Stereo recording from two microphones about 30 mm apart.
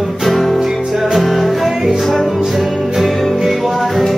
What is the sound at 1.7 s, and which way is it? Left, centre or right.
Music, centre.